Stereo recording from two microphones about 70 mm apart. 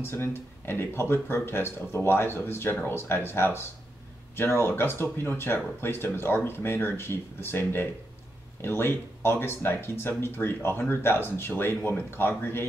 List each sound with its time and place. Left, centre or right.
0.0 s speech: left